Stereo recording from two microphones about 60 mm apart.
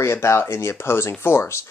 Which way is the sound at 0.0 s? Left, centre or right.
Left.